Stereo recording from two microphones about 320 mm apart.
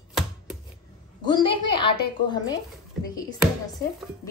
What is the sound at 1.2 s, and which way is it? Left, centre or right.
A woman's voice, centre.